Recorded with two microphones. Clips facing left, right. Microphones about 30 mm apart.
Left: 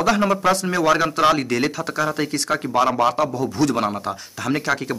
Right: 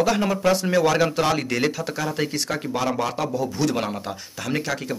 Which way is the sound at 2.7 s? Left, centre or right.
Centre.